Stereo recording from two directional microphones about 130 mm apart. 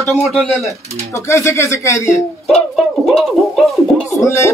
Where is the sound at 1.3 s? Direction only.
20° left (ahead or behind).